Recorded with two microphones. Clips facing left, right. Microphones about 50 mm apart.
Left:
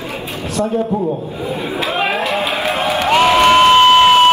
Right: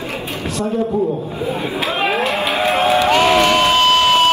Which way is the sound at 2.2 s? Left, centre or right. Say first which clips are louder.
Even; right.